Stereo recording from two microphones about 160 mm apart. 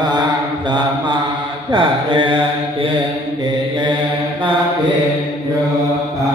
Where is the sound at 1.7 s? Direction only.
30° right (ahead or behind).